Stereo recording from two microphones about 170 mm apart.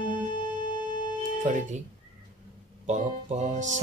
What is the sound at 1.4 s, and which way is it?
Music, 45° right (ahead or behind).